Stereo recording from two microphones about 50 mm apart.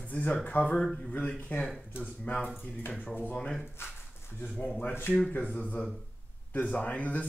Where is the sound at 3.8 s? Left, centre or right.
Left.